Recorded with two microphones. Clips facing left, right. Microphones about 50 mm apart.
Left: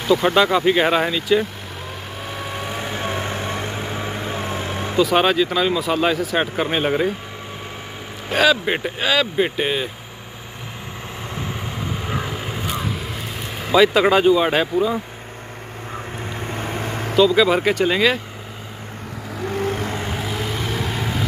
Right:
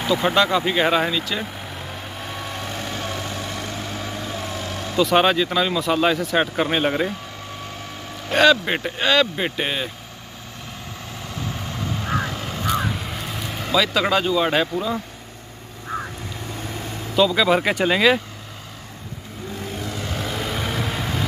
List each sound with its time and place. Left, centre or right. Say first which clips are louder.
0.0 s speech: left 3 dB; centre
2.2 s vehicle: left 3 dB; centre; by 4.9 s left
4.9 s speech: left 1 dB; centre
8.3 s speech: right 1 dB; centre
11.3 s vehicle: left 1 dB; centre
12.8 s vehicle: even; centre
13.7 s speech: left 5 dB; centre
16.3 s vehicle: left 6 dB; left
17.2 s speech: left 2 dB; centre
19.5 s vehicle: left 8 dB; left
20.2 s vehicle: left 1 dB; centre